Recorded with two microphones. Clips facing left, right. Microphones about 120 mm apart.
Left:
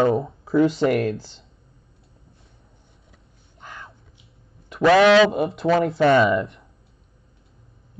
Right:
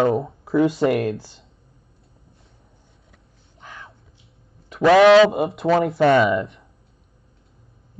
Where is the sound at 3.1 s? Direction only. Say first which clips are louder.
Even; centre (ahead or behind).